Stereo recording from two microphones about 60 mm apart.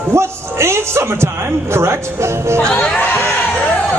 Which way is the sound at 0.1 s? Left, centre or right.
Right.